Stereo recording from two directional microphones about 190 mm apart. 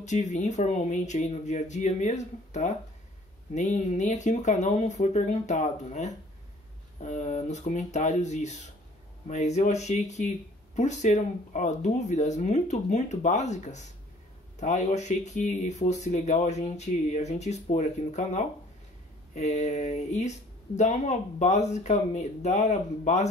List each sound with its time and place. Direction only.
0.0 s speech: 40° left (ahead or behind)